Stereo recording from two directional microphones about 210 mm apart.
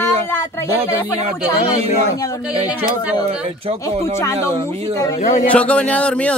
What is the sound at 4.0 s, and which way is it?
A man's voice, 15° left (ahead or behind).